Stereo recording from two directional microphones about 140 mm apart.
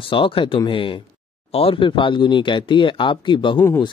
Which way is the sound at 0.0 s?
40° left (ahead or behind).